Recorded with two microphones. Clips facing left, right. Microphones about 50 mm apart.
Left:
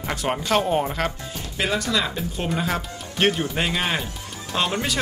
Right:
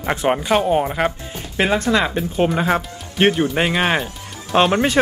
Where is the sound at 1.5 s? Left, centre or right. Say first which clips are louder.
Right 6 dB; right.